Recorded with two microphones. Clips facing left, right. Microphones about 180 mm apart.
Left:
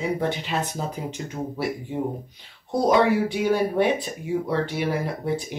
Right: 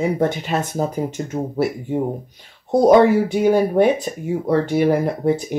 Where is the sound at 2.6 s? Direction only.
50° right (ahead or behind).